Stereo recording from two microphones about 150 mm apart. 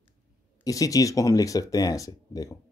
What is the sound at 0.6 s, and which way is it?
Speech, 25° left (ahead or behind).